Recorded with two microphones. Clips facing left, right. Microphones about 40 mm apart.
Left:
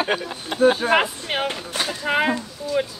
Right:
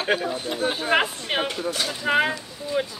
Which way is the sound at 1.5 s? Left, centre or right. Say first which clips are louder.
Even; left.